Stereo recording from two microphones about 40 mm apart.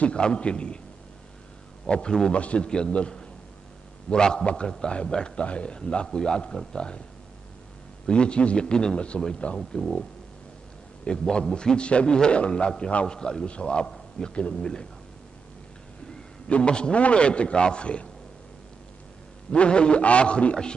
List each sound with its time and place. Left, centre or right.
0.0 s a man's voice: left
1.9 s a man's voice: left
8.1 s a man's voice: left
11.1 s a man's voice: centre
14.5 s speech: centre
16.4 s a man's voice: left
19.5 s a man's voice: left